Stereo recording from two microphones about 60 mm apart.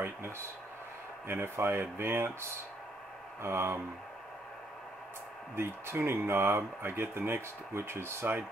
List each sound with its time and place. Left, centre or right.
1.2 s speech: right
5.6 s speech: right